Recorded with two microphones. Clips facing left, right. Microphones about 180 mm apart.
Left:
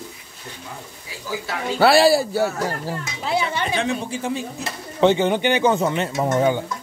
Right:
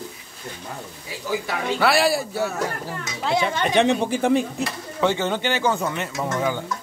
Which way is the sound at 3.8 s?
60° right (ahead or behind).